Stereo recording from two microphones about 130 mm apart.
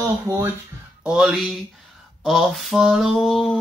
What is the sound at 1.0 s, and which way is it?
Speech, 10° right (ahead or behind).